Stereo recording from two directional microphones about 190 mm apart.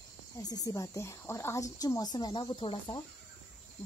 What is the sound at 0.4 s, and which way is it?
Speech, 20° left (ahead or behind).